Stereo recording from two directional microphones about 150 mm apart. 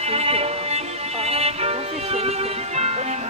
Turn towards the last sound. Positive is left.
turn(degrees=-45)  # may be behind; listen again after turning